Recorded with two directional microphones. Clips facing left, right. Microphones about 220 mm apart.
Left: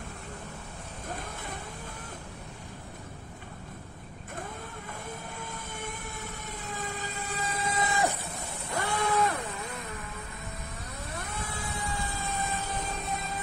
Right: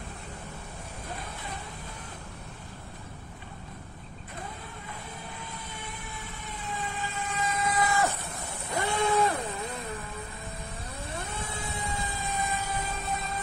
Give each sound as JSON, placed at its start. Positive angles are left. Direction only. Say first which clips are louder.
{"t": 5.4, "sound": "fire engine", "louder": "left 3 dB", "side_deg": 45}
{"t": 8.7, "sound": "a sound", "louder": "right 2 dB", "side_deg": -20}
{"t": 11.1, "sound": "vehicle", "louder": "right 1 dB", "side_deg": -30}